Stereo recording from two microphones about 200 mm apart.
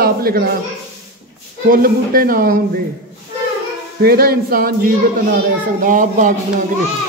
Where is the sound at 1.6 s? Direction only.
45° right (ahead or behind).